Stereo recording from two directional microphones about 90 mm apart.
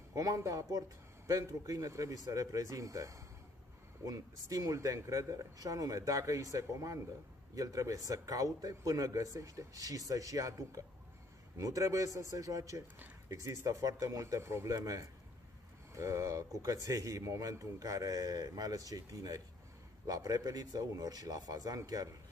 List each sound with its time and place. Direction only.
0.1 s speech: 40° right (ahead or behind)